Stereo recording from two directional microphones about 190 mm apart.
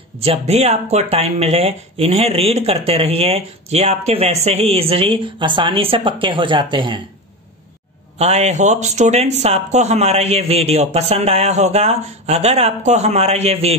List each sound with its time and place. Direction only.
0.2 s speech: 35° right (ahead or behind)
8.2 s speech: 35° right (ahead or behind)